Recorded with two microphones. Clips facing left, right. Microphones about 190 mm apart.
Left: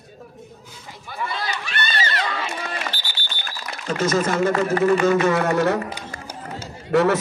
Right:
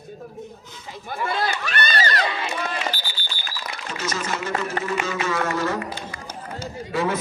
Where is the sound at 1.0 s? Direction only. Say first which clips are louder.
Right 4 dB; 50° right (ahead or behind).